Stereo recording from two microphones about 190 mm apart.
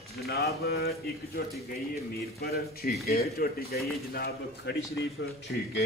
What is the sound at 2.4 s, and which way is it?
Speech, 55° left (ahead or behind).